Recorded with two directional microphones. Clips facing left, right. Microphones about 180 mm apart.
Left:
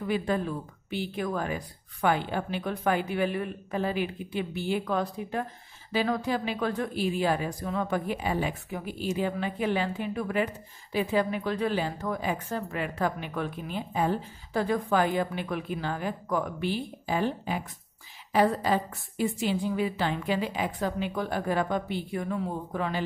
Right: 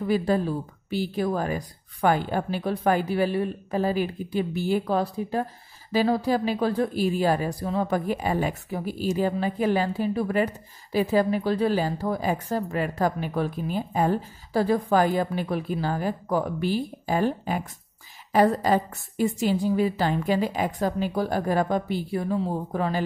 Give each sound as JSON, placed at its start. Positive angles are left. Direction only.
{"t": 0.0, "sound": "a woman's voice", "side_deg": -35}